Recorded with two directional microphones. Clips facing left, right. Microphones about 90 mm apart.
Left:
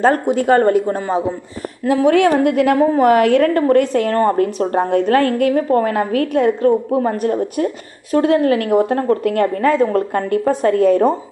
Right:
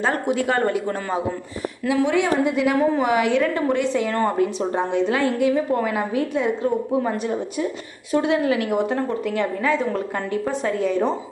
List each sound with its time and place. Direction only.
0.0 s speech: 40° left (ahead or behind)
0.8 s a man's voice: 25° left (ahead or behind)
1.9 s a woman's voice: 55° left (ahead or behind)